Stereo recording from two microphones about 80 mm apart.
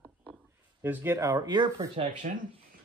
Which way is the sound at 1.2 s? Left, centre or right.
Right.